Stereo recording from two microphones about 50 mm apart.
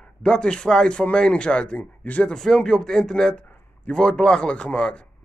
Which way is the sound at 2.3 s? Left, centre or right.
Centre.